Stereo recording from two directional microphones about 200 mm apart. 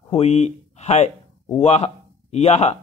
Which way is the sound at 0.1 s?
35° left (ahead or behind).